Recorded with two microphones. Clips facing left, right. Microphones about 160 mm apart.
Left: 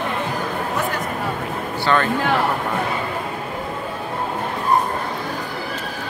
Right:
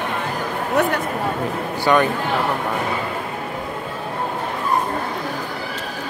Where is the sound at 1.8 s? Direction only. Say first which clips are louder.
Right 3 dB; 15° right (ahead or behind).